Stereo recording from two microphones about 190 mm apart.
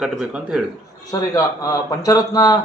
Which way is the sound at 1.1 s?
15° left (ahead or behind).